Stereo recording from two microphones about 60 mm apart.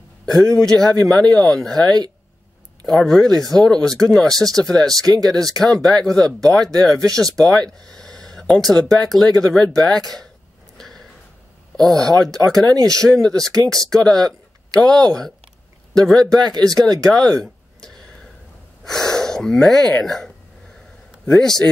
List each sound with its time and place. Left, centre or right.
0.2 s speech: centre
4.9 s speech: right
5.6 s speech: centre
10.8 s sniff: centre
12.3 s speech: centre
17.1 s a sound: centre
18.9 s speech: centre
21.4 s speech: centre